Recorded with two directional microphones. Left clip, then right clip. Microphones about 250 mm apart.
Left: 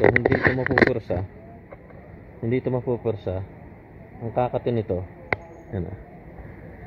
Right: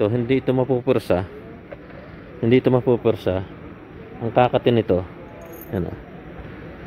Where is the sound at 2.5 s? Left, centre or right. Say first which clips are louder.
Right 8 dB; right.